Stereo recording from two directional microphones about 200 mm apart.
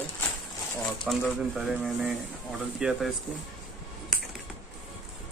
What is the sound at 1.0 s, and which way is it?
Speech, centre (ahead or behind).